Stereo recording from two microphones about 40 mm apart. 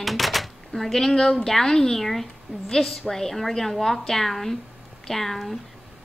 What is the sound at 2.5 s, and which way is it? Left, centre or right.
Speech, right.